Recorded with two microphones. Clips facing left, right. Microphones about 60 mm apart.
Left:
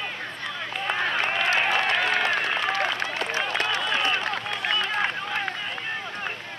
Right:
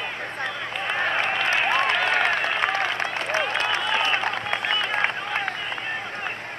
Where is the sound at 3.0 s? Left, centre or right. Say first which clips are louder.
Right 2 dB; right.